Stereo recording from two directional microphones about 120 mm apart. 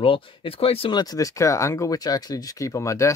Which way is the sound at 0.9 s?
30° left (ahead or behind).